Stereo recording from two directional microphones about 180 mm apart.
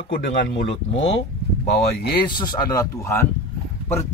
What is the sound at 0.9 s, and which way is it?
Speech, 85° left.